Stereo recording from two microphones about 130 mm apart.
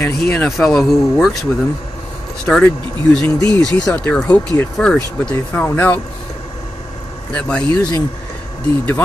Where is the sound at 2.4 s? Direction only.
5° left (ahead or behind).